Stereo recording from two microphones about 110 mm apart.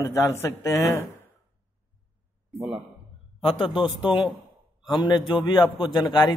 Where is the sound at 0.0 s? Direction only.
25° left (ahead or behind).